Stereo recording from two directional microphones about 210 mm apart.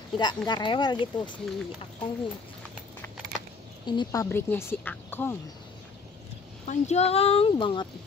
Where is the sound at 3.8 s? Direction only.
20° left (ahead or behind).